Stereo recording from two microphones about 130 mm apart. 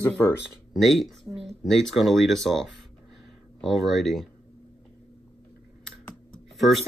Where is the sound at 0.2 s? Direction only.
10° left (ahead or behind).